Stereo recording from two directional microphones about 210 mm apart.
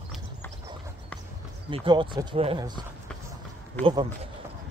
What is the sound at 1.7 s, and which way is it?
Speech, 25° right (ahead or behind).